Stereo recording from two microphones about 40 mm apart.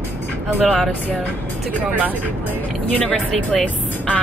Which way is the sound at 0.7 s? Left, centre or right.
Centre.